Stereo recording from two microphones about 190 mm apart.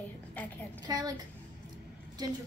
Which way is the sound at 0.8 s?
20° right (ahead or behind).